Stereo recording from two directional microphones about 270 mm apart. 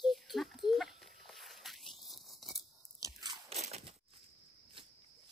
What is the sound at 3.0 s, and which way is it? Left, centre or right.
Crunch, centre.